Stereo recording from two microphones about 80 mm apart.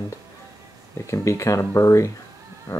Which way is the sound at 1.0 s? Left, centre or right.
Left.